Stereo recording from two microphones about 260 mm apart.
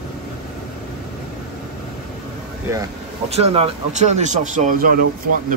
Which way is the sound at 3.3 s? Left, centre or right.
Right.